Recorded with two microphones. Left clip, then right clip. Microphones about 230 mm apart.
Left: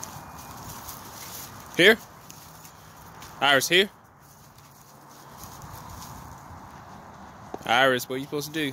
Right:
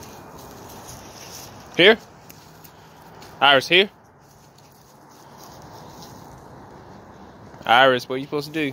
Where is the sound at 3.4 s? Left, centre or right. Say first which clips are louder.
Right 5 dB; centre.